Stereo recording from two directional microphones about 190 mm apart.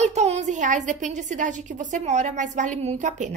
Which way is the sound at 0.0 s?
35° right (ahead or behind).